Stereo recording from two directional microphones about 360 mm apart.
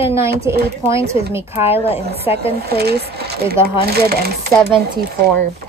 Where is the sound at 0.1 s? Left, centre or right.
Centre.